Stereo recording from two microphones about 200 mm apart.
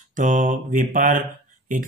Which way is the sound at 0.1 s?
40° right (ahead or behind).